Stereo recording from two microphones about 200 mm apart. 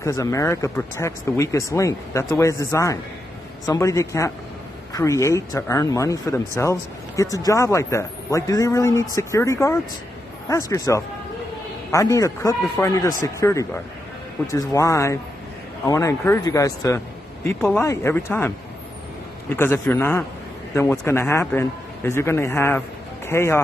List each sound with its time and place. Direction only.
0.0 s speech: 15° left (ahead or behind)
19.5 s a man's voice: 10° left (ahead or behind)